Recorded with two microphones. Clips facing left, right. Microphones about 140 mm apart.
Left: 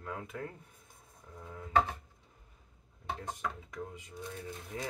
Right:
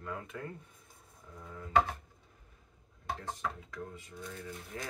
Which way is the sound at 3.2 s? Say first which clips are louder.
Even; 15° left (ahead or behind).